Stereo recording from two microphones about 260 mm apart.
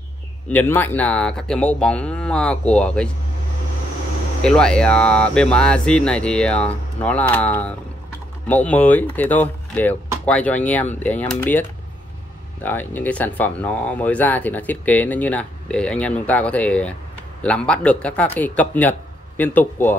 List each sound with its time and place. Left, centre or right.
0.5 s speech: centre
4.4 s speech: centre
12.6 s speech: centre